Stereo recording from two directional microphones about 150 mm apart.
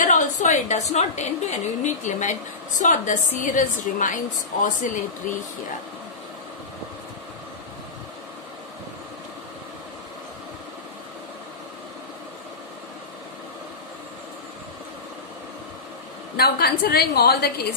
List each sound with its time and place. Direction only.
0.0 s a woman's voice: 55° left (ahead or behind)
16.3 s a woman's voice: 90° left